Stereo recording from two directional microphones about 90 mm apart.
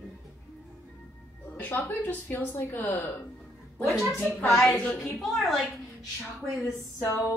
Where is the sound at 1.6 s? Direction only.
20° left (ahead or behind).